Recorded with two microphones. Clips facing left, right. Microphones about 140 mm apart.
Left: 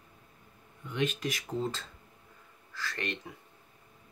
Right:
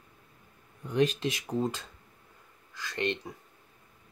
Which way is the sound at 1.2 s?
20° right (ahead or behind).